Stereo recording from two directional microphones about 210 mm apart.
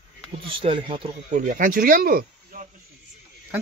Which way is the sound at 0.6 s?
25° right (ahead or behind).